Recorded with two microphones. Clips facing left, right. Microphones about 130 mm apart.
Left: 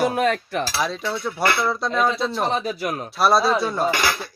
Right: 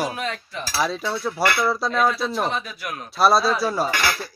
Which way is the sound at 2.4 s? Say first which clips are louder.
Left 4 dB; 35° left (ahead or behind).